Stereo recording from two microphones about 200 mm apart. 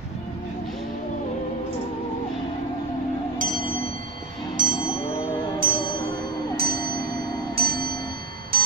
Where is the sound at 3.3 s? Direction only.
45° right (ahead or behind).